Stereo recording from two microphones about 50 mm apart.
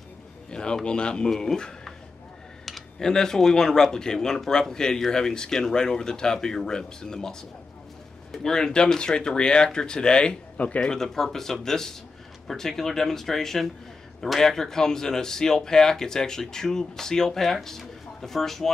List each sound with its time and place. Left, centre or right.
0.5 s a man's voice: centre
8.4 s speech: centre
10.6 s speech: left
10.9 s speech: centre